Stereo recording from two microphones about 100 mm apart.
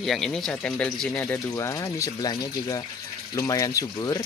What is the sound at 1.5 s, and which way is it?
Speech, 30° left (ahead or behind).